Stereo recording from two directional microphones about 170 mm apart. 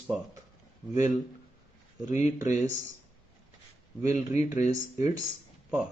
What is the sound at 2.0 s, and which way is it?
Speech, 45° left (ahead or behind).